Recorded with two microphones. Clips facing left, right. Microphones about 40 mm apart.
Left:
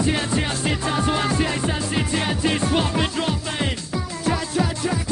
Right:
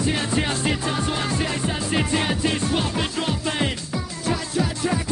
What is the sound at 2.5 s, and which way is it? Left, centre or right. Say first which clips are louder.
Music: left 2 dB; left.